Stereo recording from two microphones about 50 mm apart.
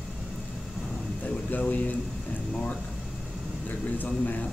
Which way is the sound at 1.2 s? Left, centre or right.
Left.